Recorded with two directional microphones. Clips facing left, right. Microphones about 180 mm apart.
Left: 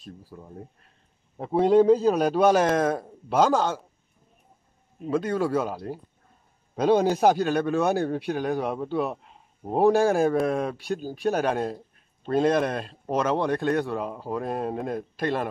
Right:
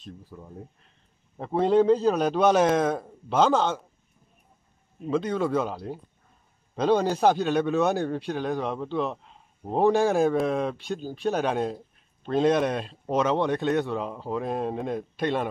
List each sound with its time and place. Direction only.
0.0 s a man's voice: 5° left (ahead or behind)
1.4 s a man's voice: 5° left (ahead or behind)
5.0 s a man's voice: 5° left (ahead or behind)